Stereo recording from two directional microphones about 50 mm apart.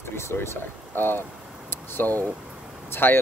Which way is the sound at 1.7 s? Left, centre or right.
Left.